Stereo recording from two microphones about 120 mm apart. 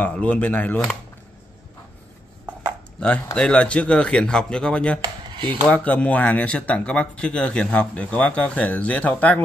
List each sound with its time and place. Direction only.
0.0 s speech: 10° left (ahead or behind)
3.3 s speech: 10° left (ahead or behind)
5.0 s a sound: 40° right (ahead or behind)
5.7 s speech: 10° left (ahead or behind)